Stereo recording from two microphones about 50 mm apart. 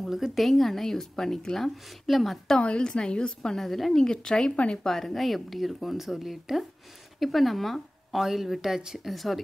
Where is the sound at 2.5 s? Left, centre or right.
Left.